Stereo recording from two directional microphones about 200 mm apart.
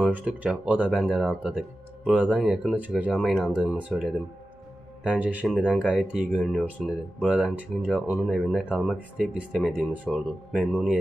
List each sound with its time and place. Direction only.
0.0 s speech: 5° right (ahead or behind)